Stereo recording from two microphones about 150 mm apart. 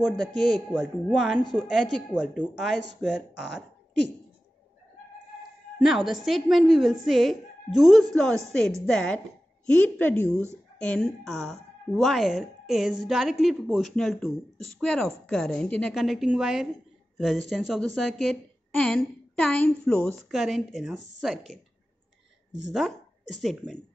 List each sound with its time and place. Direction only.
0.0 s a woman's voice: 5° left (ahead or behind)
5.8 s a woman's voice: centre (ahead or behind)
20.2 s a woman's voice: centre (ahead or behind)
22.7 s a woman's voice: centre (ahead or behind)